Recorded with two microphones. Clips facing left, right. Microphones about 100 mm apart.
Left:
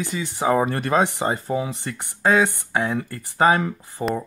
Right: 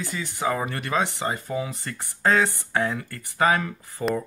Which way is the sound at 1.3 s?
30° left (ahead or behind).